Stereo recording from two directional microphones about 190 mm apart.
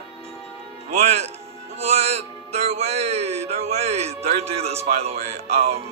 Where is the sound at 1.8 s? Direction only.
35° right (ahead or behind).